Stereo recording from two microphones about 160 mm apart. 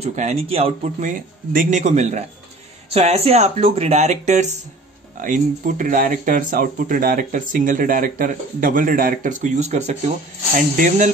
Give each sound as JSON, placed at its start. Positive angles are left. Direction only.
{"t": 0.0, "sound": "speech", "side_deg": -45}
{"t": 1.0, "sound": "speech", "side_deg": -55}
{"t": 5.1, "sound": "speech", "side_deg": -60}